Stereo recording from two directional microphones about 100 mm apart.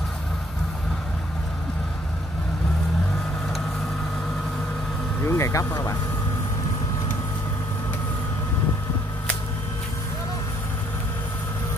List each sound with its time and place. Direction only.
5.2 s speech: 25° left (ahead or behind)